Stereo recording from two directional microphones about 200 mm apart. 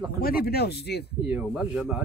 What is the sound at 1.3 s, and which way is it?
Speech, 5° right (ahead or behind).